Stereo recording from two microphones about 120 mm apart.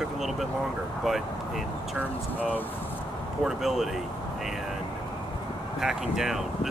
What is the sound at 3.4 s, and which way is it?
Speech, centre (ahead or behind).